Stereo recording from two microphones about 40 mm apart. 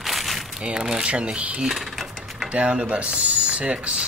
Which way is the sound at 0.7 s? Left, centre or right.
Centre.